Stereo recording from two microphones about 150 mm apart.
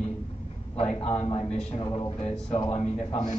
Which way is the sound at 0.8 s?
40° left (ahead or behind).